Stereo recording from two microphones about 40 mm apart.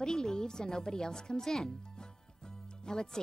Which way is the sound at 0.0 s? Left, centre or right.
Centre.